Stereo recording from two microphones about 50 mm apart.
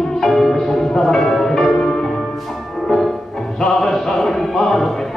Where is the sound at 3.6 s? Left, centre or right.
Centre.